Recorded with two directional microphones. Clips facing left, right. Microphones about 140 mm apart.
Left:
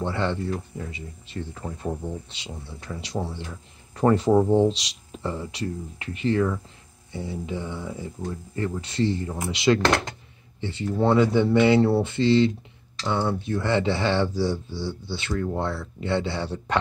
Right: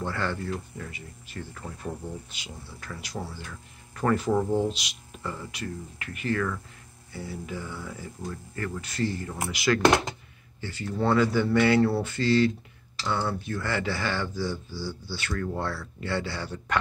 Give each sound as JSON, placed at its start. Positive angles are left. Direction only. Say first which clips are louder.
{"t": 0.0, "sound": "speech", "louder": "left 4 dB", "side_deg": 25}
{"t": 9.8, "sound": "speech", "louder": "right 1 dB", "side_deg": -10}
{"t": 10.6, "sound": "speech", "louder": "left 5 dB", "side_deg": 25}